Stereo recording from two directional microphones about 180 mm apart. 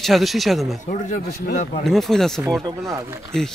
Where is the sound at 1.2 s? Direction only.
60° left (ahead or behind).